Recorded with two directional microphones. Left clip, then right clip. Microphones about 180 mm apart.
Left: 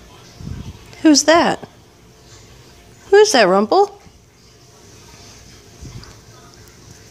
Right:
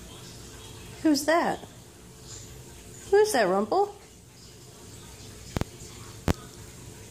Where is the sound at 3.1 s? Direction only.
45° left (ahead or behind).